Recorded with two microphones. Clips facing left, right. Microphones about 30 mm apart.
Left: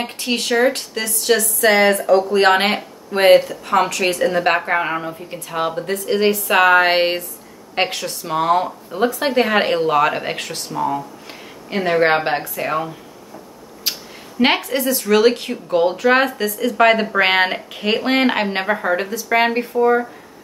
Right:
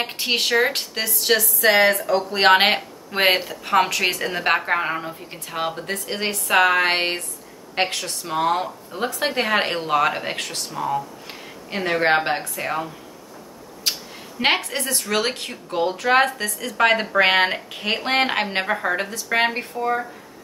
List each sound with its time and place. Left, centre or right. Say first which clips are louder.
0.0 s speech: even; right; by 2.2 s centre
2.3 s speech: left 1 dB; centre
4.2 s speech: left 5 dB; centre
14.4 s speech: left 4 dB; centre